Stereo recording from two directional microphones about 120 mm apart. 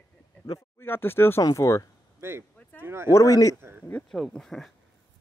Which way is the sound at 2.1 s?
20° right (ahead or behind).